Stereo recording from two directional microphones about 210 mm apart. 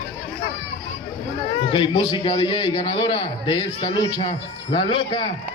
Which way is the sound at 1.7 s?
25° left (ahead or behind).